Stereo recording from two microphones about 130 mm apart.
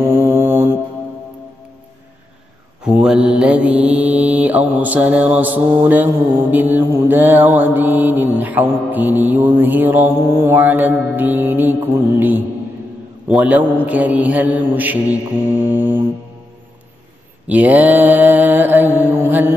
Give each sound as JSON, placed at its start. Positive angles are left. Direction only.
{"t": 0.0, "sound": "mantra", "side_deg": -20}
{"t": 2.8, "sound": "mantra", "side_deg": -5}
{"t": 17.5, "sound": "mantra", "side_deg": -10}